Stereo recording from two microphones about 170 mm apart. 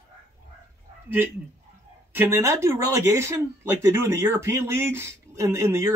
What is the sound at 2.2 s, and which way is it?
Speech, 15° right (ahead or behind).